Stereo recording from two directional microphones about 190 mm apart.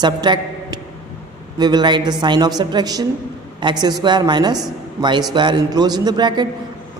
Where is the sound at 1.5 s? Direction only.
20° right (ahead or behind).